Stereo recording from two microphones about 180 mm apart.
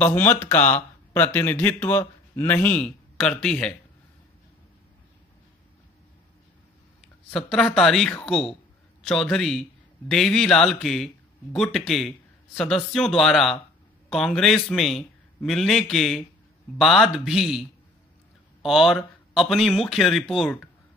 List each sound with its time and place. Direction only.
0.0 s speech: 10° left (ahead or behind)
7.2 s a man's voice: centre (ahead or behind)